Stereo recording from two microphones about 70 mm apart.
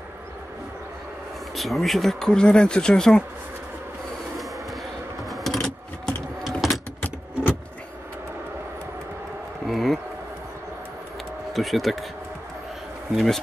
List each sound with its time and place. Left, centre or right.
1.5 s speech: centre
5.3 s a sound: centre
6.6 s typing: centre
7.0 s vehicle: left
9.7 s a sound: centre
11.5 s speech: centre
13.1 s speech: centre